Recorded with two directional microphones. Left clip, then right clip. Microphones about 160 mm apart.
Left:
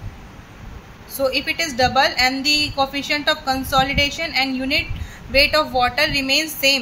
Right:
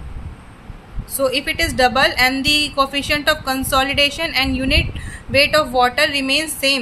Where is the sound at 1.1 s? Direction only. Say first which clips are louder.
Right 2 dB; 35° right (ahead or behind).